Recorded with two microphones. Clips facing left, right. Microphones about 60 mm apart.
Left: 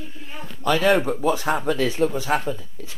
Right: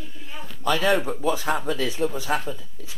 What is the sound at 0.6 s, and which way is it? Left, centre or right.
Speech, left.